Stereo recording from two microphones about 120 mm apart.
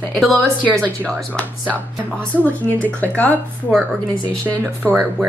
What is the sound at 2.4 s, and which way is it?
Speech, 15° left (ahead or behind).